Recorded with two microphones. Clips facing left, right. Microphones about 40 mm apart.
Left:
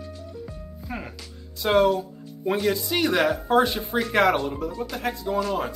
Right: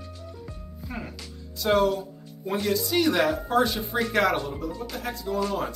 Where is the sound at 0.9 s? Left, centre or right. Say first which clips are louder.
Left 2 dB; centre.